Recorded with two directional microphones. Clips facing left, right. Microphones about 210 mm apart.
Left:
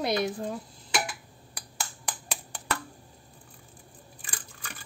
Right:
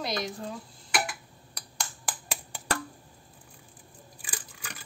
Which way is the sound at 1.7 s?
5° right (ahead or behind).